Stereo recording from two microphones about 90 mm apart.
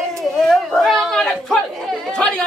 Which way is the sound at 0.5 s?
5° left (ahead or behind).